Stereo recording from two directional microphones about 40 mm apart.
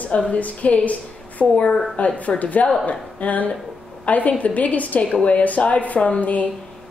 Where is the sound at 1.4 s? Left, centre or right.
Centre.